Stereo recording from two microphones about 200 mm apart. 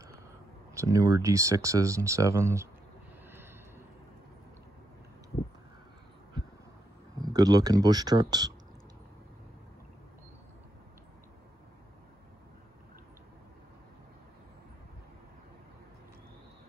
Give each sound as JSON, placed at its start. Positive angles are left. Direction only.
{"t": 0.7, "sound": "speech", "side_deg": -15}
{"t": 7.2, "sound": "speech", "side_deg": -20}